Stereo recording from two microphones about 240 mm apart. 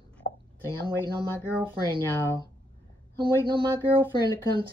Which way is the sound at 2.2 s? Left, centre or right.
Centre.